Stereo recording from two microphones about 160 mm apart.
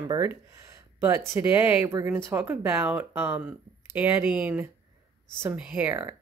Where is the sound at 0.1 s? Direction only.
20° right (ahead or behind).